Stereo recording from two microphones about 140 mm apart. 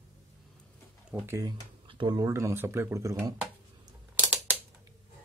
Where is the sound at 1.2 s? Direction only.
20° right (ahead or behind).